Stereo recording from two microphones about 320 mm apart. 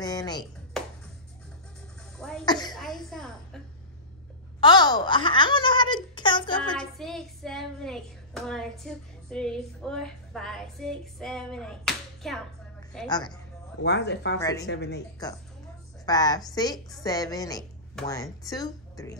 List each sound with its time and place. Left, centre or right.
0.0 s music: centre
0.8 s music: centre
2.1 s cough: centre
2.4 s a sound: centre
2.7 s music: centre
4.6 s speech: centre
6.1 s a sound: centre
6.6 s speech: centre
13.1 s speech: centre
13.8 s speech: left
14.4 s speech: centre
14.7 s speech: left
16.1 s speech: centre